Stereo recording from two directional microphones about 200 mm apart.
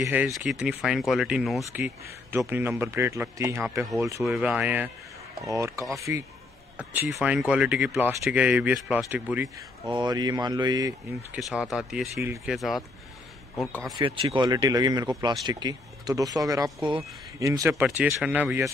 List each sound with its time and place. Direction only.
0.0 s speech: 10° right (ahead or behind)
9.8 s speech: 20° right (ahead or behind)
11.3 s speech: centre (ahead or behind)
13.8 s speech: 20° right (ahead or behind)